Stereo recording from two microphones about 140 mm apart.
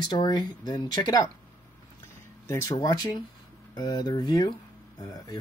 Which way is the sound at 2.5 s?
25° left (ahead or behind).